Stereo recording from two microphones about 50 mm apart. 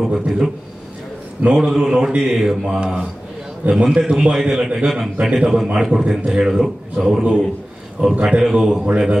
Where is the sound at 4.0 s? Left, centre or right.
Centre.